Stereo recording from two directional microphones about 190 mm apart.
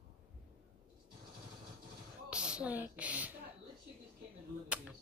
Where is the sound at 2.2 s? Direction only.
5° right (ahead or behind).